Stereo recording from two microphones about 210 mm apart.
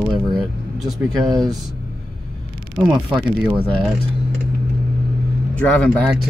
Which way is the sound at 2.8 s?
5° right (ahead or behind).